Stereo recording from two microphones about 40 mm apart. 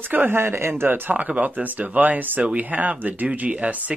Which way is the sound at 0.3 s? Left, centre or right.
Right.